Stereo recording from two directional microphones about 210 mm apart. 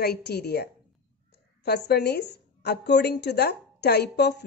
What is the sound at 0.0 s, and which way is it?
A woman's voice, 50° left (ahead or behind).